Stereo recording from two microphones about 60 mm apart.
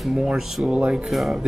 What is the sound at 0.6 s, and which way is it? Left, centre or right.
Speech, centre.